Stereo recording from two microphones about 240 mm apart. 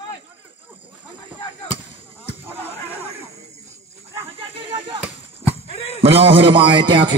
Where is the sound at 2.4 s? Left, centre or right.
Centre.